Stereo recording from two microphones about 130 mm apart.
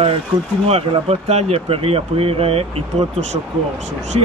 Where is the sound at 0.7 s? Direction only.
50° right (ahead or behind).